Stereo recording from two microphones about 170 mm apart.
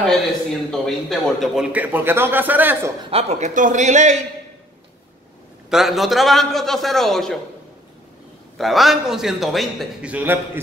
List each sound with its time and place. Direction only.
0.7 s a man's voice: centre (ahead or behind)
3.1 s a man's voice: 40° right (ahead or behind)
5.7 s a man's voice: centre (ahead or behind)
8.5 s a man's voice: centre (ahead or behind)